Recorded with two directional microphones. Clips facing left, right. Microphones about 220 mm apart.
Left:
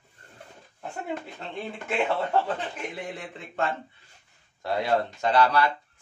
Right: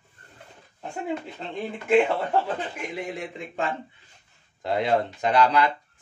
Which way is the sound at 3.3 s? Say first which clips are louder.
Left 3 dB; 15° right (ahead or behind).